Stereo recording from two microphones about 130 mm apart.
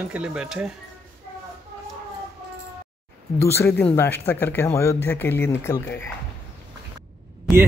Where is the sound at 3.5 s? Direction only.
15° left (ahead or behind).